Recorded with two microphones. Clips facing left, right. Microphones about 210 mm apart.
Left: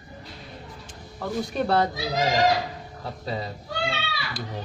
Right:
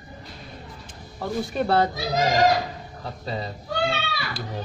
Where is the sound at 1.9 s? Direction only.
45° right (ahead or behind).